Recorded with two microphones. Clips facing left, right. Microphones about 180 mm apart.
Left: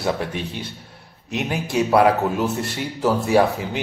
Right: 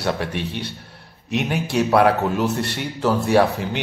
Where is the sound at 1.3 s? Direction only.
Centre (ahead or behind).